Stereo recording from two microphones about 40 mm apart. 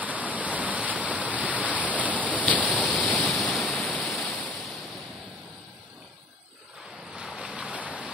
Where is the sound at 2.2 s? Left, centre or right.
Left.